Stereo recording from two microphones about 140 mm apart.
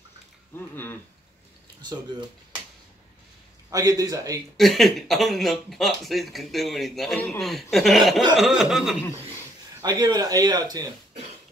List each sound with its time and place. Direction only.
1.8 s speech: 30° right (ahead or behind)
3.7 s speech: 25° right (ahead or behind)
4.6 s speech: centre (ahead or behind)
9.8 s speech: 25° right (ahead or behind)